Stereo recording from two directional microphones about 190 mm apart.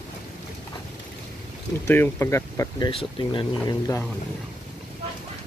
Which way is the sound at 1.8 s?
10° left (ahead or behind).